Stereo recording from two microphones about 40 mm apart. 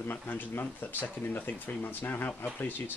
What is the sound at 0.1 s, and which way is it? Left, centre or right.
Speech, left.